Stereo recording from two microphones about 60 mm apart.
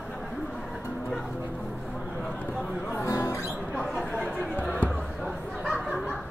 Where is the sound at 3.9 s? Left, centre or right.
Centre.